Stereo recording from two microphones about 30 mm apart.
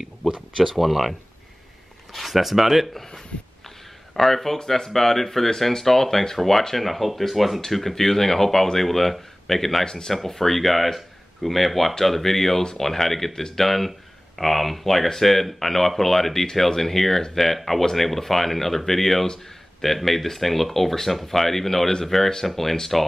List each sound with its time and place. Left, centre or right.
0.6 s speech: centre
2.1 s speech: centre
4.1 s speech: centre
9.8 s speech: left
10.1 s speech: centre
13.3 s speech: centre
13.7 s speech: centre